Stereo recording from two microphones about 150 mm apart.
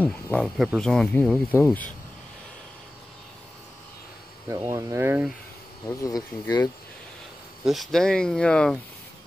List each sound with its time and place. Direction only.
0.0 s speech: 10° left (ahead or behind)
4.5 s speech: 20° right (ahead or behind)
5.9 s speech: 20° left (ahead or behind)
7.6 s speech: centre (ahead or behind)